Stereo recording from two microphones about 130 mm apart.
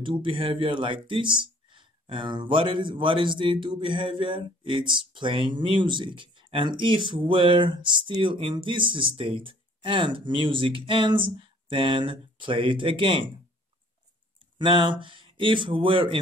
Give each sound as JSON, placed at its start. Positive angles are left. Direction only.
{"t": 0.0, "sound": "speech", "side_deg": -40}
{"t": 14.6, "sound": "speech", "side_deg": -40}